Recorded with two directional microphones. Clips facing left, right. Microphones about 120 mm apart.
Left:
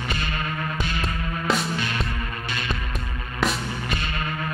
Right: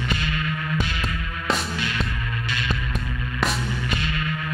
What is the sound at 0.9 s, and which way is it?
Music, 35° left (ahead or behind).